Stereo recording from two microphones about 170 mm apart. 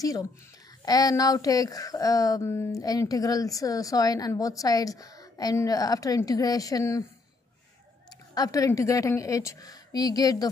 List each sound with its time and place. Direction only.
0.0 s speech: 20° left (ahead or behind)
8.4 s speech: 20° left (ahead or behind)